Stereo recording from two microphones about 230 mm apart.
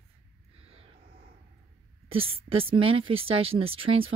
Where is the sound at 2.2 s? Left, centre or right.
Right.